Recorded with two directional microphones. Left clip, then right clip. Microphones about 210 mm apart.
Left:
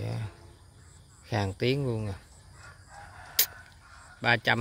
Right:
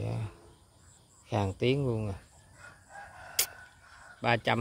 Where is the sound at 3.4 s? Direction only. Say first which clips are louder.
Left 3 dB; 5° right (ahead or behind).